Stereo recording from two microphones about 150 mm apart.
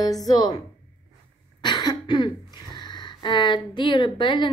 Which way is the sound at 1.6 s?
30° left (ahead or behind).